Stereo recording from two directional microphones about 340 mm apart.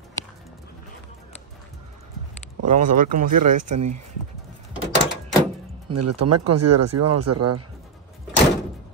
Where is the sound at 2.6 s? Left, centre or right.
Right.